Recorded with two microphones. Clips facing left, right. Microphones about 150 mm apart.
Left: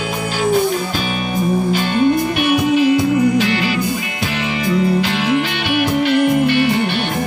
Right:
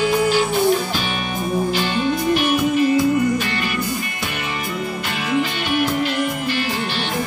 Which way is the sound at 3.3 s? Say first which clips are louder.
Left 6 dB; 90° left.